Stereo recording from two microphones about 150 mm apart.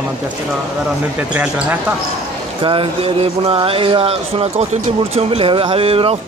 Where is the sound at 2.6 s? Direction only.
35° right (ahead or behind).